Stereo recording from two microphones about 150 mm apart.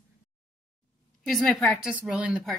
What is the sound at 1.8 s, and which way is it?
Speech, 5° right (ahead or behind).